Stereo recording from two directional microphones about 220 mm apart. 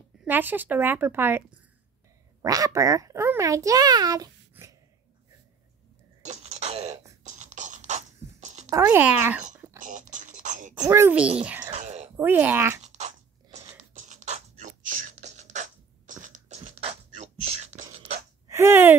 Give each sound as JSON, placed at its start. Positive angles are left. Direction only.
{"t": 0.2, "sound": "a woman's voice", "side_deg": -10}
{"t": 2.4, "sound": "a child's voice", "side_deg": -15}
{"t": 6.2, "sound": "a sound", "side_deg": -30}
{"t": 7.2, "sound": "scratch", "side_deg": -35}
{"t": 8.6, "sound": "speech", "side_deg": -10}
{"t": 9.8, "sound": "a sound", "side_deg": -35}
{"t": 10.8, "sound": "a woman's voice", "side_deg": -10}
{"t": 11.6, "sound": "a sound", "side_deg": -30}
{"t": 12.2, "sound": "a woman's voice", "side_deg": -10}
{"t": 12.8, "sound": "a sound", "side_deg": -30}
{"t": 13.9, "sound": "beatboxing", "side_deg": -35}
{"t": 18.5, "sound": "speech", "side_deg": -10}